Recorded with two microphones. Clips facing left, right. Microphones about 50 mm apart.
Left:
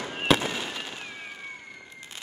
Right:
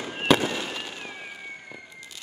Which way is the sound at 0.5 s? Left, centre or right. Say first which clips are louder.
Right 2 dB; centre.